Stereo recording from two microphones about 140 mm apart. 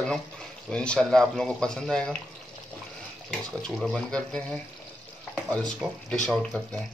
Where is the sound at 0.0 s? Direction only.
5° left (ahead or behind).